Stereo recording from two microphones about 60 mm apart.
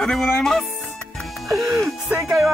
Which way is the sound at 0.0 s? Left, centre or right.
Centre.